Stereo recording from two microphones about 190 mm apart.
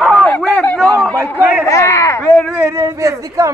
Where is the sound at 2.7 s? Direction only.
15° right (ahead or behind).